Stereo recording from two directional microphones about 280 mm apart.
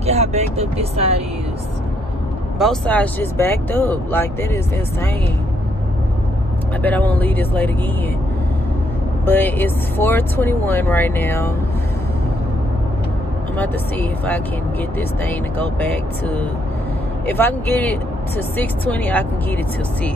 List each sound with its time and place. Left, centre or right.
0.0 s speech: right
2.6 s speech: centre
6.8 s speech: centre
9.2 s speech: centre
13.6 s speech: centre